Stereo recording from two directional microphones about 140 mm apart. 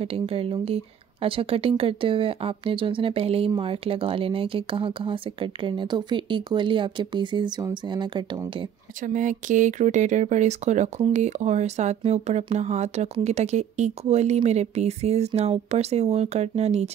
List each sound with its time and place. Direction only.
0.0 s speech: 45° right (ahead or behind)
9.0 s speech: 65° right (ahead or behind); by 16.9 s 50° right (ahead or behind)